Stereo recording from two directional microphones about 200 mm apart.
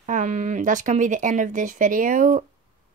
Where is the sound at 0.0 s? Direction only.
40° right (ahead or behind).